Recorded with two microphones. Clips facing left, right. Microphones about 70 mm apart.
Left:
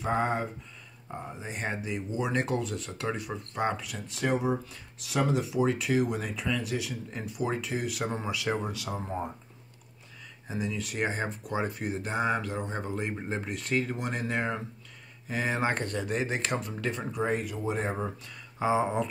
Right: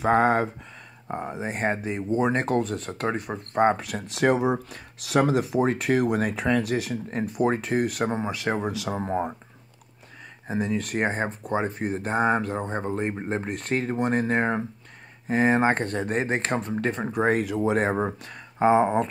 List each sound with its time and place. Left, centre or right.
0.0 s speech: right
1.6 s speech: right
3.8 s speech: right
8.1 s speech: right
8.6 s speech: right
10.5 s speech: right
17.2 s speech: right
17.9 s speech: right